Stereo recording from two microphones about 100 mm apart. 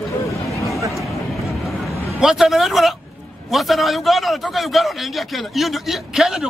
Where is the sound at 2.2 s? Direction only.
5° right (ahead or behind).